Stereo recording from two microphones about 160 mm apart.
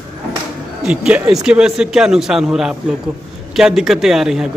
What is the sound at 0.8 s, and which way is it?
A man's voice, 5° right (ahead or behind).